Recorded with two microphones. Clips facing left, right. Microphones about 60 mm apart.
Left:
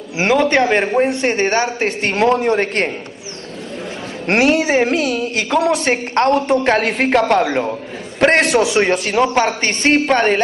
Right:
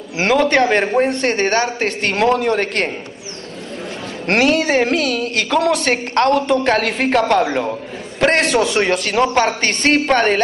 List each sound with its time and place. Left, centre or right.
0.2 s a man's voice: centre
1.0 s a woman's voice: centre; by 2.9 s left
4.3 s a woman's voice: left
9.1 s a man's voice: centre
10.0 s a man's voice: centre